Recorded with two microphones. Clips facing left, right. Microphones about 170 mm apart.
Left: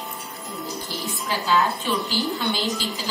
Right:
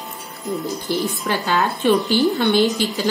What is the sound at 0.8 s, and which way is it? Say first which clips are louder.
A woman's voice: right 9 dB; 65° right (ahead or behind).